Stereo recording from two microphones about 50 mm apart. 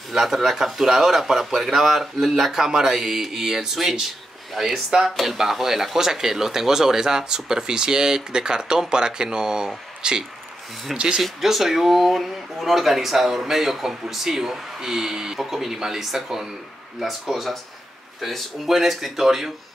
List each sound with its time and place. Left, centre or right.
0.1 s speech: centre
10.9 s speech: centre